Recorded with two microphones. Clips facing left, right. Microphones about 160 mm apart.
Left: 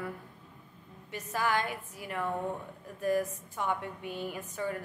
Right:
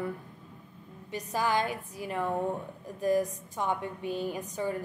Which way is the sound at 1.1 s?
15° right (ahead or behind).